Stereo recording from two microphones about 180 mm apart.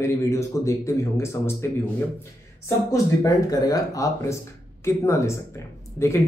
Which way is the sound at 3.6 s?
20° left (ahead or behind).